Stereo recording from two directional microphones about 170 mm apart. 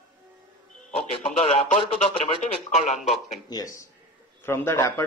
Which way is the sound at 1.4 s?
35° left (ahead or behind).